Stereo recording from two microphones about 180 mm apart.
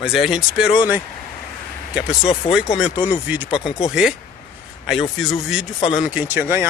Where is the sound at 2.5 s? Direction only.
30° left (ahead or behind).